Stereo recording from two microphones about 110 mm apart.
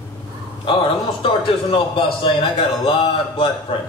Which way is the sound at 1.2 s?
50° left (ahead or behind).